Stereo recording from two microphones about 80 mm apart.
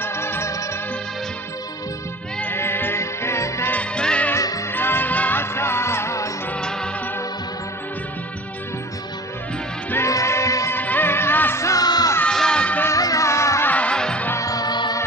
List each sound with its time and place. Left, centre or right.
0.0 s music: left
2.4 s music: left
3.7 s music: centre
4.7 s music: left
10.0 s music: left
10.7 s music of bollywood: left
11.6 s music: left
12.3 s music: centre
12.9 s music: left
13.7 s music: centre
14.3 s music: left